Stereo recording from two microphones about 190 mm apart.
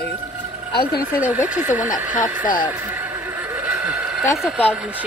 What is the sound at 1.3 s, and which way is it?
Speech, 10° right (ahead or behind).